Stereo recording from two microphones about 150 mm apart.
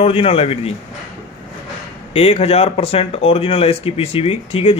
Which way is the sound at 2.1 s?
40° left (ahead or behind).